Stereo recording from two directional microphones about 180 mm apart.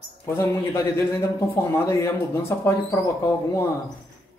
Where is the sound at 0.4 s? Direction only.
15° left (ahead or behind).